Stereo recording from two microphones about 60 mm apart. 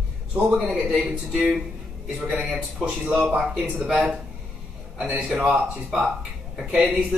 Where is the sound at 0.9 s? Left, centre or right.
Centre.